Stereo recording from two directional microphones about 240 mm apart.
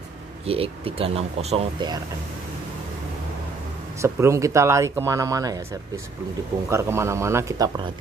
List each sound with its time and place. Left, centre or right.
0.5 s speech: right
4.0 s speech: centre